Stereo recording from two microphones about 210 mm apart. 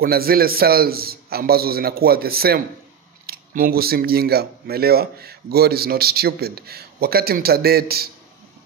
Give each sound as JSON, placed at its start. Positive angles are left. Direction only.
{"t": 0.0, "sound": "speech", "side_deg": -45}